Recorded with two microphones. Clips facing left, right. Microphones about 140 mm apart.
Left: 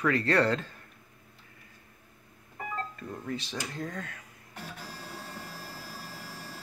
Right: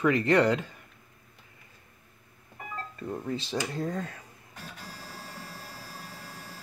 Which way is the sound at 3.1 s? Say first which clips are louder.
Right 8 dB; 25° right (ahead or behind).